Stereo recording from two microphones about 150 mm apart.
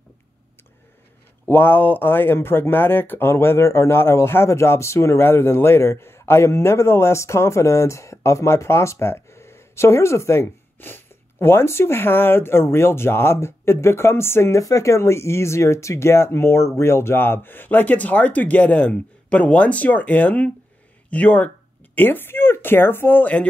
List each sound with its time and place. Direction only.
1.4 s speech: 15° left (ahead or behind)